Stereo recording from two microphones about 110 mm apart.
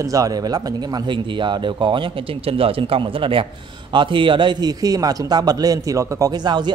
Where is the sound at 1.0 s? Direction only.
45° right (ahead or behind); by 6.3 s 30° right (ahead or behind).